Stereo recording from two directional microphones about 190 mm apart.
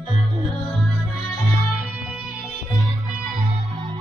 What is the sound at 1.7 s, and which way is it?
Music, 5° right (ahead or behind).